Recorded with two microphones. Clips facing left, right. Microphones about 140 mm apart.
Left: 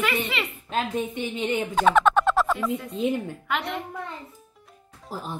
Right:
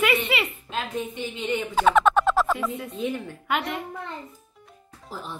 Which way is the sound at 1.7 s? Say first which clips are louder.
Even; centre (ahead or behind).